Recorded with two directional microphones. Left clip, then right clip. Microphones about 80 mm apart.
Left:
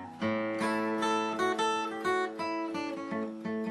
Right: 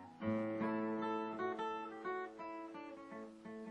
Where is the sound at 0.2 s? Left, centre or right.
Right.